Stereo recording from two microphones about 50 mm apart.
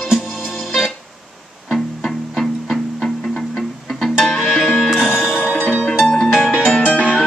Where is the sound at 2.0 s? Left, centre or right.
Centre.